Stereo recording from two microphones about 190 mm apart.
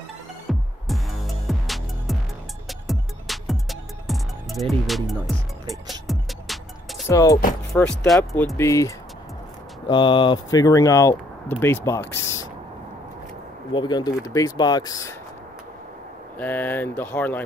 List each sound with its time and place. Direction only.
0.5 s music: centre (ahead or behind)
7.1 s speech: 20° left (ahead or behind)
8.0 s speech: centre (ahead or behind)
8.5 s speech: 15° left (ahead or behind)
12.1 s a sound: 15° left (ahead or behind)
13.7 s speech: 20° left (ahead or behind)
16.3 s speech: 10° left (ahead or behind)